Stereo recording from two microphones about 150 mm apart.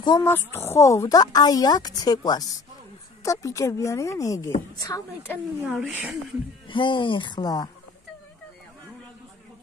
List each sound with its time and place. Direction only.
0.2 s speech: 15° left (ahead or behind)
5.7 s a woman's voice: 10° right (ahead or behind)
6.7 s speech: 35° left (ahead or behind)